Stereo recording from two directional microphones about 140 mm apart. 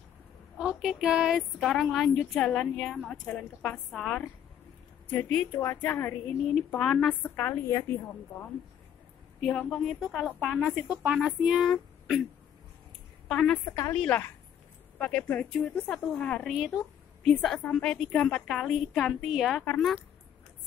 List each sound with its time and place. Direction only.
0.6 s a sound: 5° right (ahead or behind)
1.6 s a woman's voice: centre (ahead or behind)
9.4 s a woman's voice: 5° left (ahead or behind)
13.3 s a woman's voice: 5° left (ahead or behind)
13.7 s a woman's voice: 15° left (ahead or behind)
16.4 s a woman's voice: 5° right (ahead or behind)